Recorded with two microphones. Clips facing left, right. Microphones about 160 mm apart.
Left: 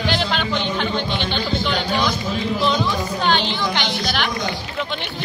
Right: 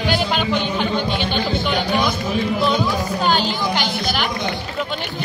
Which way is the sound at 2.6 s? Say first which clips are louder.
Right 1 dB; 5° right (ahead or behind).